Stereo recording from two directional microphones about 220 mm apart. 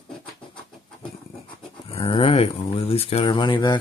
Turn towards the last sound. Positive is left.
turn(degrees=20)  # may be behind; listen again after turning